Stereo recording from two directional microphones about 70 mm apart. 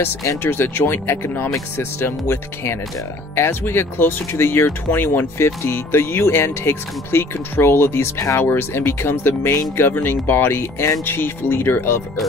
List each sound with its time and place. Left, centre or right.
0.0 s speech: left
0.4 s speech: left